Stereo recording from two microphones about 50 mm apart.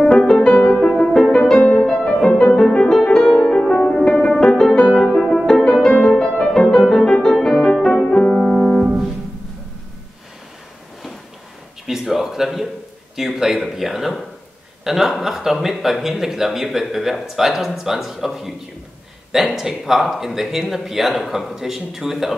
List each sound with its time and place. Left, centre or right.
0.2 s music: centre
5.0 s music: centre
11.8 s a sound: centre
15.1 s a man's voice: centre